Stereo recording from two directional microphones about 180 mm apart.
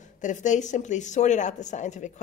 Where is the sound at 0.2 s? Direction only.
45° left (ahead or behind).